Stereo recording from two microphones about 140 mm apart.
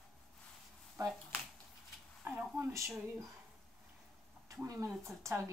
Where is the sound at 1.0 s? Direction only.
25° right (ahead or behind).